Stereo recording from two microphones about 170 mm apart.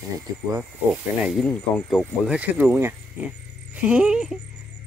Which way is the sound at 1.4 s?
5° left (ahead or behind).